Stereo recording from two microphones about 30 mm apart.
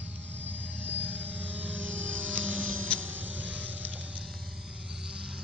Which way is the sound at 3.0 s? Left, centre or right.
Right.